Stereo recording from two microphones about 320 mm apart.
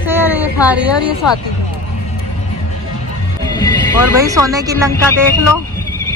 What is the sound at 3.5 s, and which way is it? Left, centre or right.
Music, centre.